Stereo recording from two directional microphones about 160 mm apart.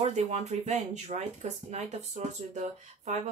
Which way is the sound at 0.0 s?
45° right (ahead or behind).